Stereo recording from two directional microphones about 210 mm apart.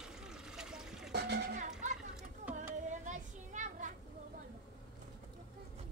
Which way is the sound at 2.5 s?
35° right (ahead or behind).